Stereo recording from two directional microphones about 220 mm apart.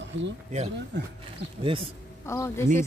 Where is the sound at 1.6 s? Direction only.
25° right (ahead or behind).